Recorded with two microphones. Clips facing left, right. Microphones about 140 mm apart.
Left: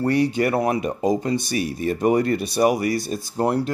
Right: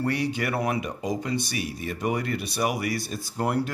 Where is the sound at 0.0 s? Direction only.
40° left (ahead or behind).